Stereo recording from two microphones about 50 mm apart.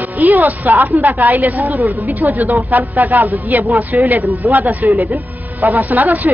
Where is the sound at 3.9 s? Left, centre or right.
Centre.